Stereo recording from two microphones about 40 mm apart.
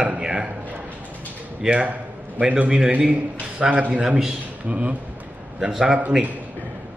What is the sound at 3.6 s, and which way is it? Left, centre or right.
Speech, right.